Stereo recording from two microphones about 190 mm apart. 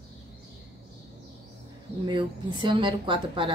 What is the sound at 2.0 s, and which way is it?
Speech, 25° right (ahead or behind).